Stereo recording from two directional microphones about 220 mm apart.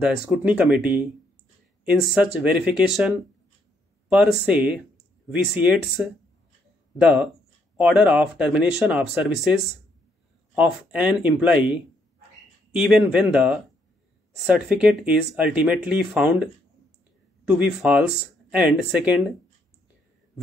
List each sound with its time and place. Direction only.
0.0 s speech: 5° right (ahead or behind)
7.0 s speech: 5° right (ahead or behind)
12.7 s speech: 5° right (ahead or behind)
17.5 s speech: 5° right (ahead or behind)